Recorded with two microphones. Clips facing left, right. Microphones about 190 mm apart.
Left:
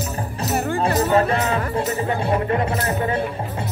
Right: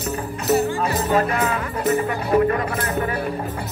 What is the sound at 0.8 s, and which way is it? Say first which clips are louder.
Music: left 2 dB; 30° left (ahead or behind).